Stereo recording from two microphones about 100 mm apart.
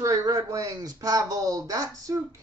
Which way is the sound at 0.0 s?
35° right (ahead or behind).